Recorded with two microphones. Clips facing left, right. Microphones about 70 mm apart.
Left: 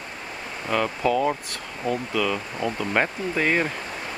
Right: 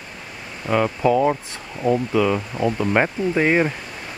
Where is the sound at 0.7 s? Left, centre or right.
Centre.